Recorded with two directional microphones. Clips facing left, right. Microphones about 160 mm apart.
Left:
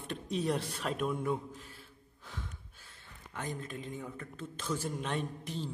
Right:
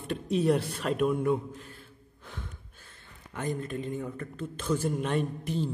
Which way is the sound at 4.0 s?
Centre (ahead or behind).